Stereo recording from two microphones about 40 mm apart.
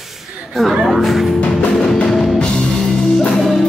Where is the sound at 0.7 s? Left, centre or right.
Centre.